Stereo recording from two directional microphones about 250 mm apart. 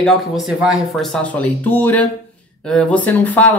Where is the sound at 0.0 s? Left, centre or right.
Centre.